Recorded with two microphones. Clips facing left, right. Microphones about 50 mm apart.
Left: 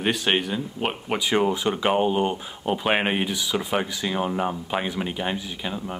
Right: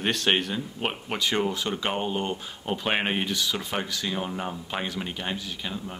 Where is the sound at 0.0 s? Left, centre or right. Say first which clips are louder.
Left 2 dB; centre.